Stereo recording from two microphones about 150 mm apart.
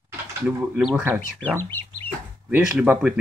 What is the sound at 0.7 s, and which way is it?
Speech, 10° right (ahead or behind).